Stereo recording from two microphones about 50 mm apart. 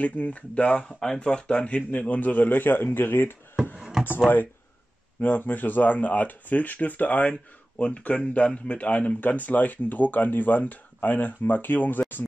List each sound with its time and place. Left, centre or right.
0.0 s speech: left
3.7 s a sound: centre
4.3 s speech: left